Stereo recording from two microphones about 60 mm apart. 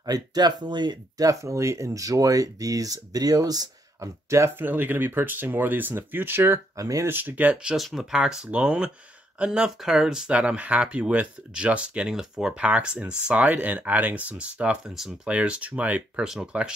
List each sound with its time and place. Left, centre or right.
0.0 s speech: right
1.1 s speech: right
4.6 s speech: right
6.8 s speech: right
7.1 s speech: right
7.7 s speech: centre
12.1 s speech: centre; by 16.0 s right
16.2 s speech: centre